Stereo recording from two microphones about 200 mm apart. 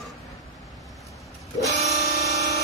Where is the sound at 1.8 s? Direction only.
50° left (ahead or behind).